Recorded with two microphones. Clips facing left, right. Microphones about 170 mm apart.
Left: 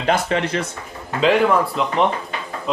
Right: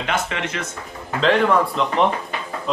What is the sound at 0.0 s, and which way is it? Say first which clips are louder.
Speech: left 5 dB; 35° left (ahead or behind).